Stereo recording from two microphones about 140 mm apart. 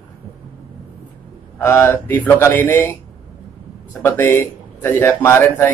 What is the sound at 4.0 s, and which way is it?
A man's voice, 15° left (ahead or behind).